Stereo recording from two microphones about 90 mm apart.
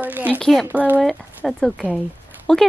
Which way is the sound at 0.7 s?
20° right (ahead or behind).